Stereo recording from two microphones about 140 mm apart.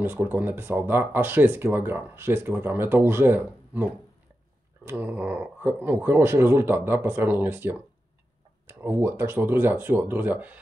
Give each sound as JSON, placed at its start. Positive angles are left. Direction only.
{"t": 0.0, "sound": "speech", "side_deg": -15}
{"t": 8.8, "sound": "speech", "side_deg": -15}